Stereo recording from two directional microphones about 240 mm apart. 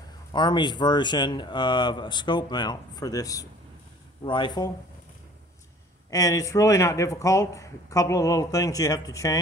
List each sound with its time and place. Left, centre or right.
0.3 s speech: centre
6.0 s speech: centre